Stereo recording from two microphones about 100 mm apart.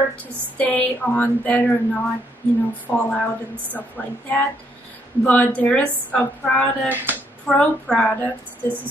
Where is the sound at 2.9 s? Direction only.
25° left (ahead or behind).